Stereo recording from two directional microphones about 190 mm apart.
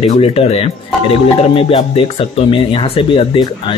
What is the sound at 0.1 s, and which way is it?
Speech, 30° left (ahead or behind).